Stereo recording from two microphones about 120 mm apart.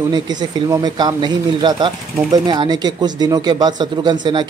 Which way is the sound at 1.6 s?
40° right (ahead or behind).